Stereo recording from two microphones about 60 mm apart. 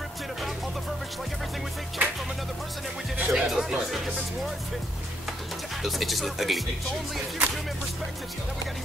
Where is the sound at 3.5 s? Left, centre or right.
Centre.